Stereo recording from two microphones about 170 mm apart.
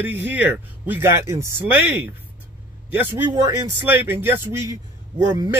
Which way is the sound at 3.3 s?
25° right (ahead or behind).